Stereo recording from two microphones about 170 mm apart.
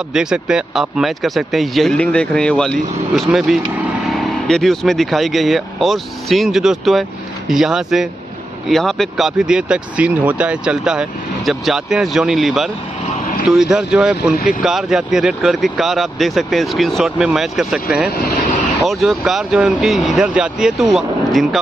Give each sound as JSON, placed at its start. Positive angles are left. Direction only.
{"t": 0.1, "sound": "speech", "side_deg": -5}
{"t": 18.2, "sound": "vehicle", "side_deg": 50}
{"t": 18.9, "sound": "speech", "side_deg": 0}